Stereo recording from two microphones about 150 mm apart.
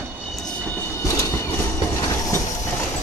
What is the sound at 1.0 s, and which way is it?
Train, 20° left (ahead or behind).